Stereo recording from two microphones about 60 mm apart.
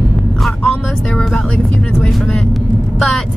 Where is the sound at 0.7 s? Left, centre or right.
Centre.